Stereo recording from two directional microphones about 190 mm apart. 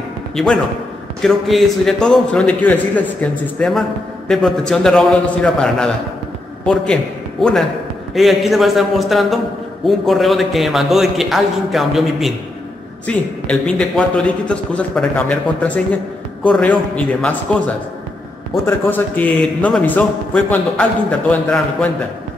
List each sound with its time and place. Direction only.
0.4 s a man's voice: centre (ahead or behind)
18.7 s a man's voice: 10° left (ahead or behind)